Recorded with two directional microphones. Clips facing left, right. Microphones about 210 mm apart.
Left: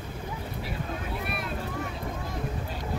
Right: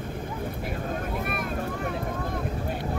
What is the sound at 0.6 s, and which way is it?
Vehicle, 50° right (ahead or behind).